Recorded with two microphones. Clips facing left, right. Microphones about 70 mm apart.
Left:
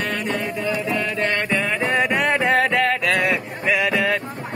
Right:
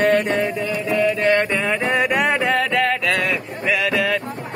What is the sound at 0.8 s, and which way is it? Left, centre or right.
Mantra, centre.